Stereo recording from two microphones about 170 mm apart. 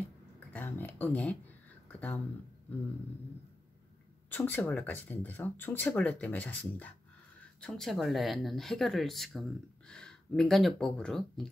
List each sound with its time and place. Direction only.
0.5 s speech: 10° left (ahead or behind)
1.9 s a sound: 10° left (ahead or behind)
4.3 s speech: 10° left (ahead or behind)